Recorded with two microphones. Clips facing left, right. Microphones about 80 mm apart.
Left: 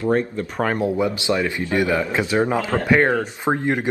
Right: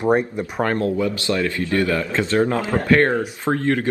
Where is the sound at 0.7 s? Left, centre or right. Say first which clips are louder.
Even; centre.